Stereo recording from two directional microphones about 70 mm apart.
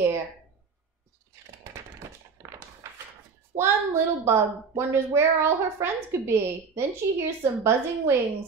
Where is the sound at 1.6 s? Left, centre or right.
Right.